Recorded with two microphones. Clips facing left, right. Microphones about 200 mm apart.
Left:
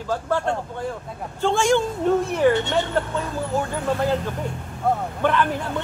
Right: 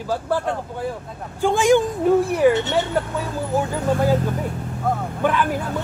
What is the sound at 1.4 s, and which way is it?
A man's voice, 15° right (ahead or behind).